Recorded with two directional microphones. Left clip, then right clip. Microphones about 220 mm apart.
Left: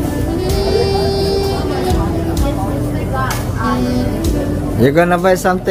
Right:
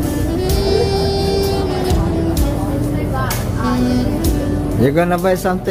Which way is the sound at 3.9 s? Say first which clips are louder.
Even; centre (ahead or behind).